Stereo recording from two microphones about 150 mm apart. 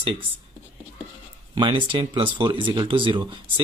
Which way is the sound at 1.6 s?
35° right (ahead or behind).